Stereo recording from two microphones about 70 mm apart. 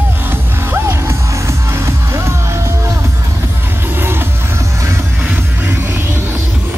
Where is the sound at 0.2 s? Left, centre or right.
Right.